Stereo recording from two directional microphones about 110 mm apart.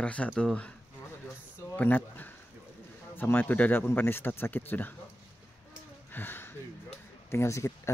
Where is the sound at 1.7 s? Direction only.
15° left (ahead or behind).